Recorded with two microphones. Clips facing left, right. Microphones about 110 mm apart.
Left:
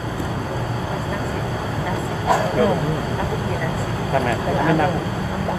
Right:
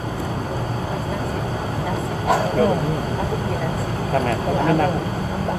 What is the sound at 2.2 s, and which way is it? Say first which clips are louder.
Speech: even; 40° right (ahead or behind).